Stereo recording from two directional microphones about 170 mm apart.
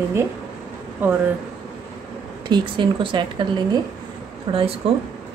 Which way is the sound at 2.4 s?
25° right (ahead or behind).